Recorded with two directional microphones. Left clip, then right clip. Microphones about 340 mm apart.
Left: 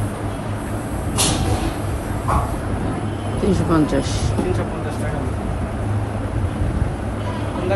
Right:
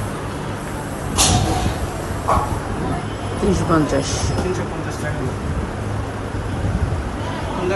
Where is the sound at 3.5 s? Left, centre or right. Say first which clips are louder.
Right 1 dB; centre.